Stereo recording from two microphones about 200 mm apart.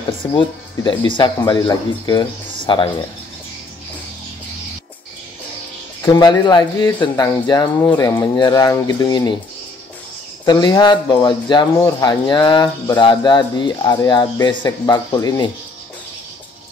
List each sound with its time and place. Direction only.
0.2 s speech: 25° left (ahead or behind)
6.1 s speech: 20° left (ahead or behind)
10.4 s speech: 20° left (ahead or behind)